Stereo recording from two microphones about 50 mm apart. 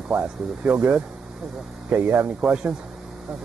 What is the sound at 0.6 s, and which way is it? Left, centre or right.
Speech, right.